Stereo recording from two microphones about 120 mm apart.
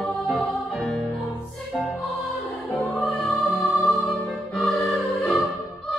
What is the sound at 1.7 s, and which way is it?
Music, 5° left (ahead or behind).